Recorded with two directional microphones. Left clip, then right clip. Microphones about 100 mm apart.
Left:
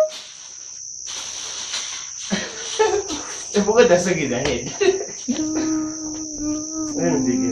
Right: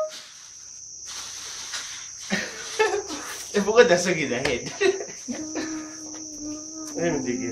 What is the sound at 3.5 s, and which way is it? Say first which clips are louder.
Cricket: left 4 dB; 25° right (ahead or behind).